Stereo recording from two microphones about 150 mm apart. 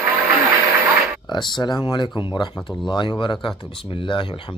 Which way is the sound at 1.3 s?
30° left (ahead or behind).